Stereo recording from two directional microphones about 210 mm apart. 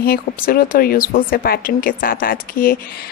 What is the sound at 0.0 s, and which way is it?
Speech, 45° left (ahead or behind).